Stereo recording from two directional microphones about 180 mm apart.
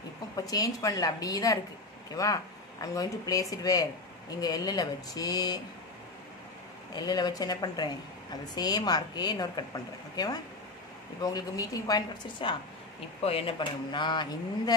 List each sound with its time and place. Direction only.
0.5 s speech: 20° left (ahead or behind)
6.9 s speech: 20° left (ahead or behind)